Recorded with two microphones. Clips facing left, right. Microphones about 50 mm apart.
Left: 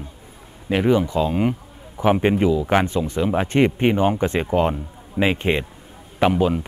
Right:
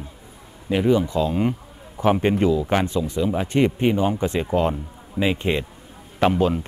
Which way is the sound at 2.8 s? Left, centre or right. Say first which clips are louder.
Left 1 dB; left.